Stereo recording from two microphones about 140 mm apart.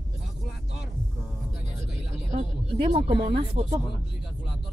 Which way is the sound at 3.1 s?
40° right (ahead or behind).